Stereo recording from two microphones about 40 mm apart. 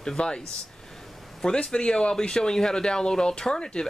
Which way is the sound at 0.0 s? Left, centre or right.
Centre.